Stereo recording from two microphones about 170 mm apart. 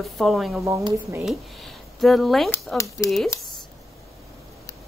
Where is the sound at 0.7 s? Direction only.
15° right (ahead or behind).